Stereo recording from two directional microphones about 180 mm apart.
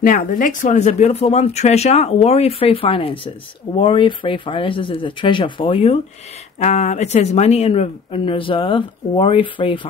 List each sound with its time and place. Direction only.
0.0 s speech: 45° left (ahead or behind); by 9.8 s 30° left (ahead or behind)